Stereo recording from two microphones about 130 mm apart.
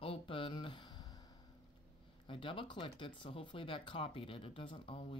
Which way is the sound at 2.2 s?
40° left (ahead or behind).